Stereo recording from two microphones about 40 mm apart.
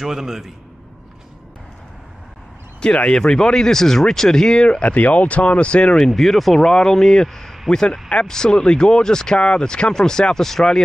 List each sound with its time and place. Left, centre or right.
0.0 s a man's voice: centre
2.8 s speech: left
4.8 s speech: left
5.9 s speech: centre